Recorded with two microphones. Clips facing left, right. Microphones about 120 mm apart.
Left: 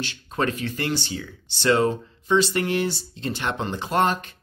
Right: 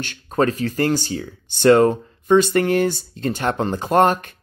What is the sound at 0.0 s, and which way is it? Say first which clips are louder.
Speech: right 6 dB; 40° right (ahead or behind).